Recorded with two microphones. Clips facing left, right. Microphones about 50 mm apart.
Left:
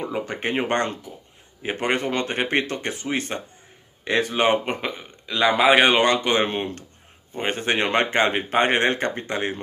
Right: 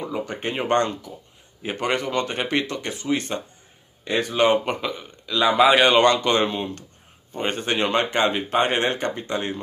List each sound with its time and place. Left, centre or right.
0.0 s a man's voice: left